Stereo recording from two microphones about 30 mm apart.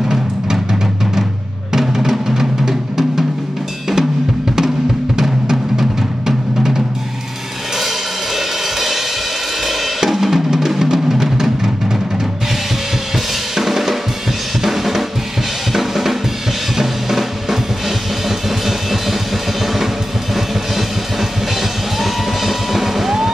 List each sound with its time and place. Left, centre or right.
1.7 s music: centre
5.1 s music: centre
8.4 s music: centre
9.7 s drum kit: centre
13.1 s drum kit: centre
18.7 s music: centre
19.6 s drum kit: centre
20.3 s music: centre